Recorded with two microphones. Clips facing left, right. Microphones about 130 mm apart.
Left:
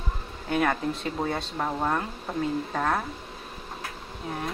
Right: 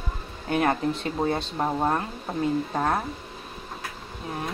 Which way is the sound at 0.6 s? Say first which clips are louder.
Right 2 dB; 30° right (ahead or behind).